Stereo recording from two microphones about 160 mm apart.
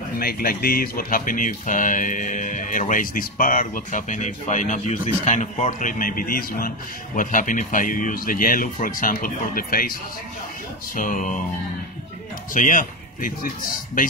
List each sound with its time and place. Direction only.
0.2 s speech: 70° left (ahead or behind)
11.0 s speech: 55° left (ahead or behind)
12.5 s speech: 55° left (ahead or behind)